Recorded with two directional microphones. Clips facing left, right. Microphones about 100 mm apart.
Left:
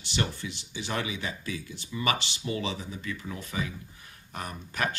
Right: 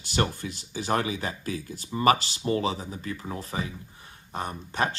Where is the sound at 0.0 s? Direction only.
45° right (ahead or behind).